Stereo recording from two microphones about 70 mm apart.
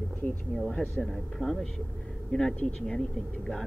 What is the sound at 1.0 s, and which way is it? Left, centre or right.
Speech, centre.